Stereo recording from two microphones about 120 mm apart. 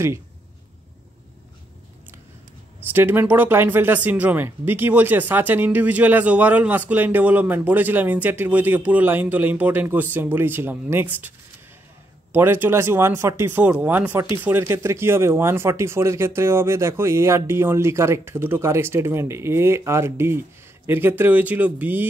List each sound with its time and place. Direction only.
2.9 s speech: 20° right (ahead or behind)